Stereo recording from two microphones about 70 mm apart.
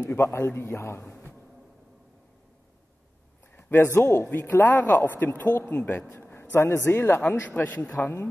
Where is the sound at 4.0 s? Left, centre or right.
Left.